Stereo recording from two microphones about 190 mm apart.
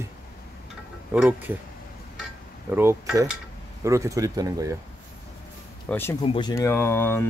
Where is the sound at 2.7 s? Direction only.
10° right (ahead or behind).